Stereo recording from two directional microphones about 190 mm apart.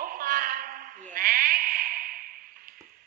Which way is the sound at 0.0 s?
50° right (ahead or behind).